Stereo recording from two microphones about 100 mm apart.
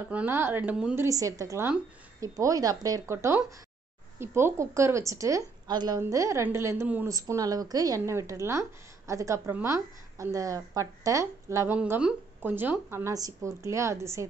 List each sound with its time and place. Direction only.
0.3 s speech: 20° right (ahead or behind)
0.9 s speech: 30° right (ahead or behind)
5.7 s a woman's voice: 45° right (ahead or behind)
5.9 s speech: 30° right (ahead or behind)
13.1 s speech: 35° right (ahead or behind)